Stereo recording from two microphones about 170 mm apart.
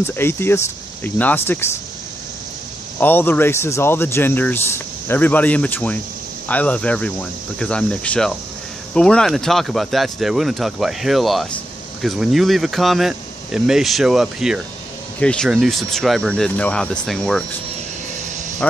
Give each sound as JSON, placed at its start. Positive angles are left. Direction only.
{"t": 0.0, "sound": "speech", "side_deg": 15}
{"t": 3.0, "sound": "speech", "side_deg": 10}
{"t": 18.6, "sound": "speech", "side_deg": 5}